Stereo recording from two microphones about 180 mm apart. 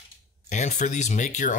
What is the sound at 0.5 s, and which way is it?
Speech, 40° left (ahead or behind).